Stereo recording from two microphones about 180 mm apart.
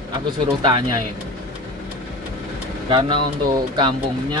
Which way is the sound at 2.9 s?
25° right (ahead or behind).